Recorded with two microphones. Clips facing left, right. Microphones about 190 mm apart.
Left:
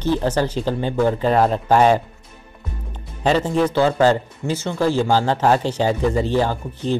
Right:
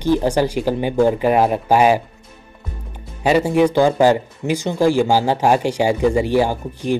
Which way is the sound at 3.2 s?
10° right (ahead or behind).